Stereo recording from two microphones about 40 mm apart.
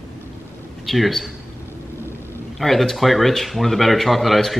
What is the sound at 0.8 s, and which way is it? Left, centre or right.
Speech, centre.